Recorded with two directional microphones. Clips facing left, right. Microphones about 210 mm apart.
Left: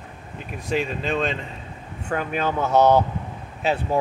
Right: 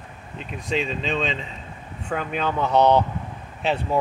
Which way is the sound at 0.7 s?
5° left (ahead or behind).